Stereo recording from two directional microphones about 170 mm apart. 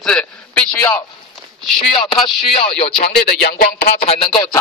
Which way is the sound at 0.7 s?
15° left (ahead or behind).